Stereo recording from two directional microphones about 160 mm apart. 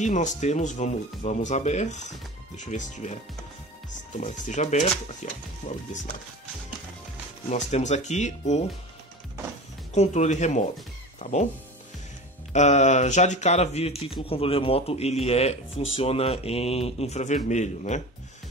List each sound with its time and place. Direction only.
0.0 s speech: 50° left (ahead or behind)
4.2 s speech: 50° left (ahead or behind)
7.4 s speech: 45° left (ahead or behind)
9.9 s speech: 45° left (ahead or behind)
11.1 s music: 45° left (ahead or behind)
12.5 s speech: 45° left (ahead or behind)